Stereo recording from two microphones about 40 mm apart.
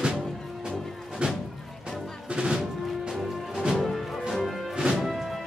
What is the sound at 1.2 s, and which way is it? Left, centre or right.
Music, right.